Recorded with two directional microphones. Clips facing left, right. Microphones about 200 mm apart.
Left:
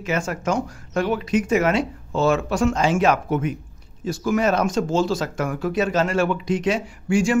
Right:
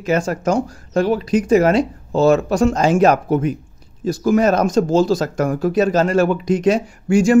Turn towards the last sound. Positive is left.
turn(degrees=-40)  # may be behind; listen again after turning